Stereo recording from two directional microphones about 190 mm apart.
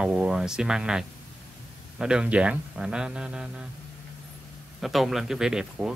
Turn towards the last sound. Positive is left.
turn(degrees=-5)  # may be behind; listen again after turning